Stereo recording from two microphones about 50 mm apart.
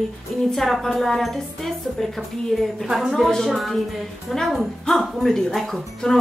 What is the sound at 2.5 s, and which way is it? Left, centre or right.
A woman's voice, centre.